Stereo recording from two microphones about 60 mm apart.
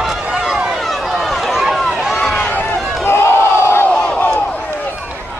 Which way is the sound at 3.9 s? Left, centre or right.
Centre.